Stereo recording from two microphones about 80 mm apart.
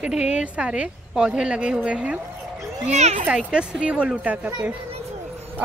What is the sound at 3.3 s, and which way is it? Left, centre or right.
A woman's voice, centre.